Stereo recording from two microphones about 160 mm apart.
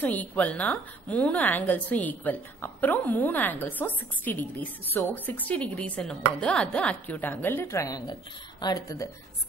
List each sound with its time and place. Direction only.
0.0 s a woman's voice: 10° left (ahead or behind)